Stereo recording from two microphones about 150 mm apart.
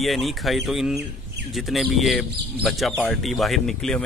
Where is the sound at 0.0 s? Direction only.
Centre (ahead or behind).